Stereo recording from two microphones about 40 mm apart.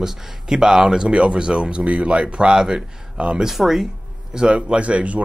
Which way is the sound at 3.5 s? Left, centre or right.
Centre.